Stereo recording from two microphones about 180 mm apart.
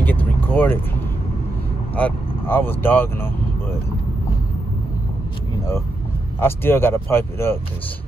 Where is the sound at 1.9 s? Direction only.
10° left (ahead or behind).